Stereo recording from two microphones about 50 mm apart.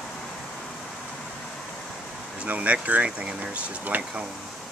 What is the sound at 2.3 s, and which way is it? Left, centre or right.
Speech, right.